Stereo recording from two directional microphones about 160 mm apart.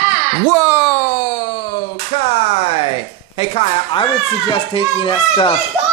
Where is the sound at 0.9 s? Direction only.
20° left (ahead or behind).